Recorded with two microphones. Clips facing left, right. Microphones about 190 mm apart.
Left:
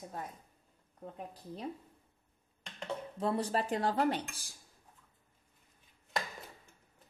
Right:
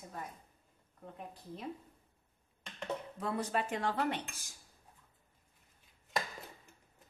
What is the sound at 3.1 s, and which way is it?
Speech, 30° left (ahead or behind).